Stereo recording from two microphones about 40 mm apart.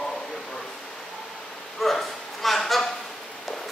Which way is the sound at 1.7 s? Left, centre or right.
Centre.